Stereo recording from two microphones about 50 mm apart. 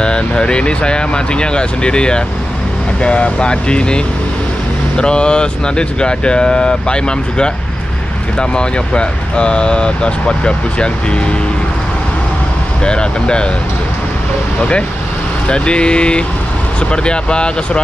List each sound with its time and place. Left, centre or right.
0.0 s speech: centre
12.8 s speech: centre
15.4 s speech: left